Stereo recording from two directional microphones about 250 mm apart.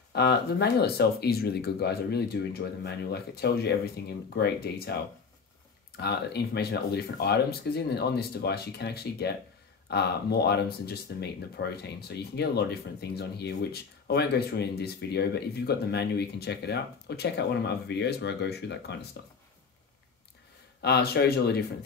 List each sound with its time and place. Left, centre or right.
0.1 s speech: left
5.9 s speech: left
20.8 s speech: left